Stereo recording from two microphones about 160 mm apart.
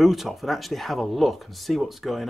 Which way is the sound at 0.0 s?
Centre (ahead or behind).